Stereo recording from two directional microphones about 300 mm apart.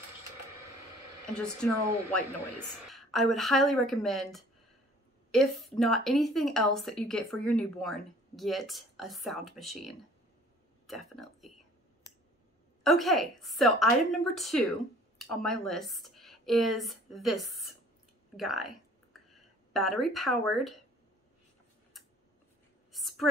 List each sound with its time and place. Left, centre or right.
1.3 s speech: centre
2.9 s speech: centre
12.8 s speech: centre
22.9 s a sound: centre